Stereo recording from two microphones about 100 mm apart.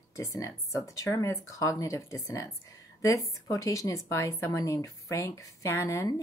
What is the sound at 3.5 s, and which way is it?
A woman's voice, 35° left (ahead or behind).